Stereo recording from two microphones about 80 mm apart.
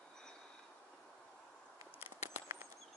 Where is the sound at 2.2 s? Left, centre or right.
Right.